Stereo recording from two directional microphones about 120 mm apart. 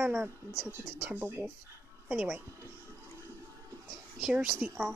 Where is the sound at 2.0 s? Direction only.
5° right (ahead or behind).